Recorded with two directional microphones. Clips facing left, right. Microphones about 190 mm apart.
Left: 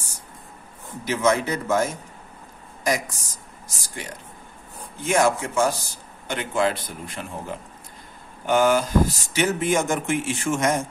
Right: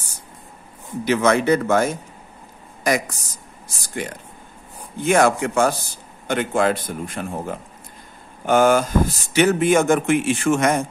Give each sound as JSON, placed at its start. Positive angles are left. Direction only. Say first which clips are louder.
{"t": 1.0, "sound": "a man's voice", "louder": "right 4 dB", "side_deg": -65}
{"t": 3.6, "sound": "a man's voice", "louder": "right 8 dB", "side_deg": -60}